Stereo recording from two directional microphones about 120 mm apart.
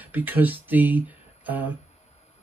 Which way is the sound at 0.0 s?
15° right (ahead or behind).